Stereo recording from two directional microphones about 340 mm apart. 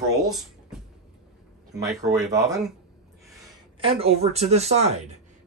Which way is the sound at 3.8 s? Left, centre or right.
Centre.